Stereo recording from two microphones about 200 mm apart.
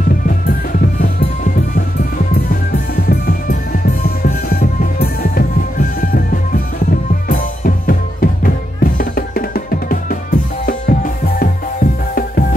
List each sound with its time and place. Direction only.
3.1 s music: 45° left (ahead or behind)